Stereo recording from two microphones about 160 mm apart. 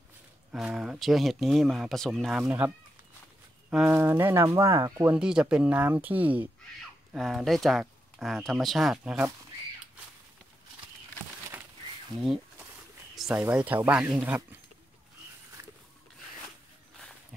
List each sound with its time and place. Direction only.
0.5 s speech: 5° right (ahead or behind)
3.7 s speech: 10° right (ahead or behind)
5.1 s speech: 5° right (ahead or behind)
13.1 s speech: 5° right (ahead or behind)